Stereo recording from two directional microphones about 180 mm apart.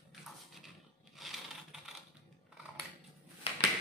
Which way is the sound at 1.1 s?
Centre (ahead or behind).